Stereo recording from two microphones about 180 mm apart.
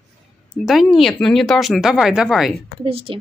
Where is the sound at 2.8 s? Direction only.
30° right (ahead or behind).